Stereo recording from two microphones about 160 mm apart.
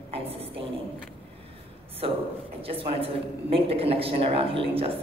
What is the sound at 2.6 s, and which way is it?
A woman's voice, 35° right (ahead or behind).